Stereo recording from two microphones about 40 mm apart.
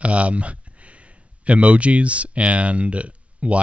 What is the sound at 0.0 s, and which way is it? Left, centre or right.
Speech, right.